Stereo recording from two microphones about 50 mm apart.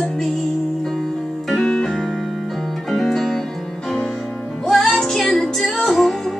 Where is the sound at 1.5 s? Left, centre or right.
Centre.